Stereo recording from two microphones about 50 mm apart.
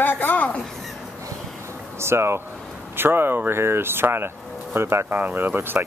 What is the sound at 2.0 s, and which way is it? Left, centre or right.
Speech, right.